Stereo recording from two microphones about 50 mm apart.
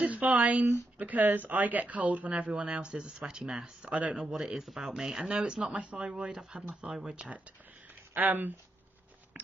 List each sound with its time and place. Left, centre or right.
0.0 s a sound: right
0.9 s speech: right
4.2 s speech: centre
6.9 s speech: centre
8.1 s speech: right